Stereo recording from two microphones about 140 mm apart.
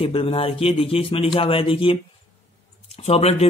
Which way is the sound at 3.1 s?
50° left (ahead or behind).